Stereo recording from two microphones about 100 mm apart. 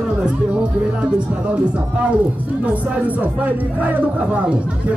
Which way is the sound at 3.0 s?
15° right (ahead or behind).